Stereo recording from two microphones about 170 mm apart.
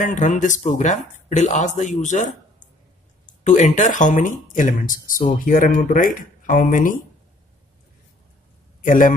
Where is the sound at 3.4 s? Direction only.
45° left (ahead or behind).